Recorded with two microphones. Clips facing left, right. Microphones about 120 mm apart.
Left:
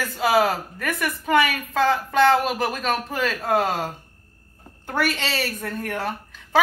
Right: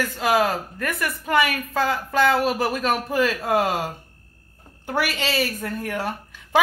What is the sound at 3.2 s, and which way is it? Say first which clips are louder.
Speech: even; 10° right (ahead or behind).